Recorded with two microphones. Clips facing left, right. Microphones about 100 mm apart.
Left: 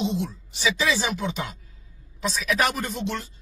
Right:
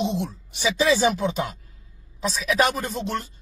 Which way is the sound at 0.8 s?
45° right (ahead or behind).